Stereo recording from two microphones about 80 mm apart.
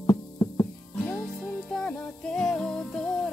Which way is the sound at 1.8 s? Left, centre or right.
Centre.